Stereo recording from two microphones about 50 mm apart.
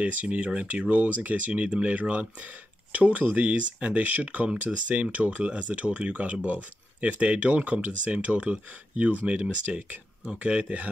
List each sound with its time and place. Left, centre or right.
0.0 s speech: right